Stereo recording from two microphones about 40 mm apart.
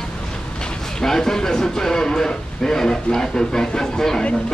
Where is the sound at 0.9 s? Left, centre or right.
Centre.